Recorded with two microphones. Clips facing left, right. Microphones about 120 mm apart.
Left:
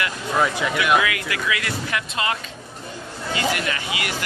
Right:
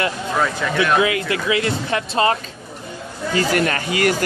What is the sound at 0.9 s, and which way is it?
Speech, 30° right (ahead or behind).